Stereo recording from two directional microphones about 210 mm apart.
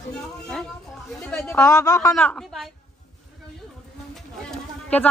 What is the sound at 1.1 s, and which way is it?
Speech, 5° left (ahead or behind).